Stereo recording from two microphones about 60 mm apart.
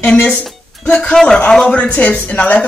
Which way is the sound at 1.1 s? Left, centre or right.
Centre.